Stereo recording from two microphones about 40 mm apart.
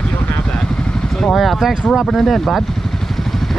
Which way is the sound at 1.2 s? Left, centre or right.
Centre.